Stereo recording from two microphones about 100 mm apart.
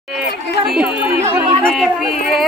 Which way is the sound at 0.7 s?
10° right (ahead or behind).